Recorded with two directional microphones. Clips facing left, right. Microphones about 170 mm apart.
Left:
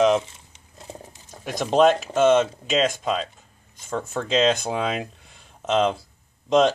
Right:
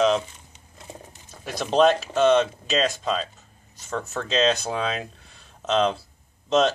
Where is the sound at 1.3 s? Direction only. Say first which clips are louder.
Left 2 dB; 15° left (ahead or behind).